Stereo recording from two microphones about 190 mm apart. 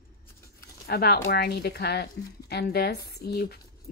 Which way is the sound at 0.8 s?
55° left (ahead or behind).